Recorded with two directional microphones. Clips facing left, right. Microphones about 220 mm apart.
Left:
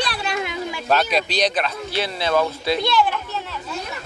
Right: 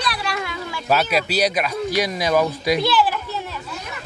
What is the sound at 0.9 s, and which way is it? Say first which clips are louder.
Speech: right 1 dB; 5° right (ahead or behind).